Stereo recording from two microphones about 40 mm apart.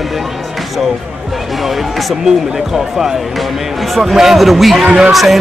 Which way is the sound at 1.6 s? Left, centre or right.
Centre.